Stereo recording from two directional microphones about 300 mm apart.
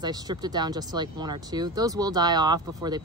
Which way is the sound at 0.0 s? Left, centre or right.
Centre.